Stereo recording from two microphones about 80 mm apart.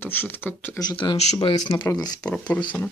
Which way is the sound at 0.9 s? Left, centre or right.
Left.